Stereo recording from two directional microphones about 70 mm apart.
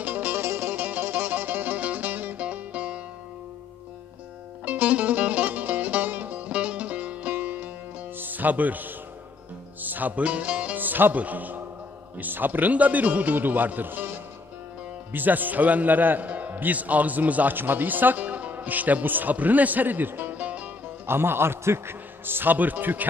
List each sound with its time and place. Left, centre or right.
0.0 s music: right
4.6 s music: right
8.2 s a man's voice: right
15.1 s a man's voice: right
21.1 s a man's voice: right